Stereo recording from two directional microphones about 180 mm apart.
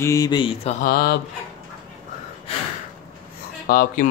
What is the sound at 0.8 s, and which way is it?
Speech, 55° left (ahead or behind).